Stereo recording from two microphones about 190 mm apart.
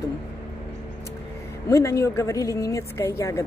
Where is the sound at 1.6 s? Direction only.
15° left (ahead or behind).